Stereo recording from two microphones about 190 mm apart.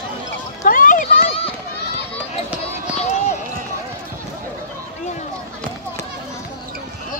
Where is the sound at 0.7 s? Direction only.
45° left (ahead or behind).